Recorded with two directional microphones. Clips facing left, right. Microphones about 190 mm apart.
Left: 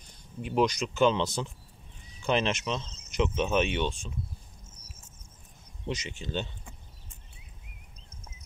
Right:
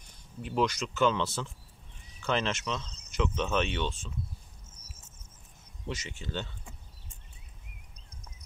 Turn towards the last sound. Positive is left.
turn(degrees=20)  # may be behind; listen again after turning